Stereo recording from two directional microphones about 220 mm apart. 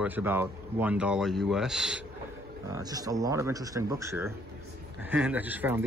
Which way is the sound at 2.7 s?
15° right (ahead or behind).